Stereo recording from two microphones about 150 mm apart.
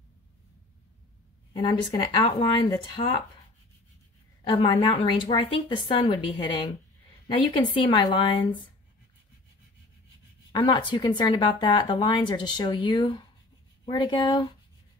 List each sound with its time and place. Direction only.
1.5 s speech: 30° left (ahead or behind)
4.5 s speech: 35° left (ahead or behind)
10.5 s speech: 30° left (ahead or behind)